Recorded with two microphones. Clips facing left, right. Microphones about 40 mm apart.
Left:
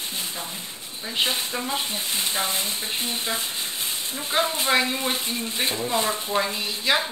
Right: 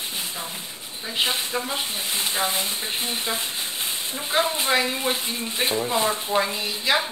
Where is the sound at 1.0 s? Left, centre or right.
Centre.